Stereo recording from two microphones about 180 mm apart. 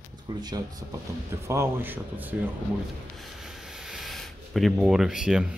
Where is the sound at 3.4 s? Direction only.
Centre (ahead or behind).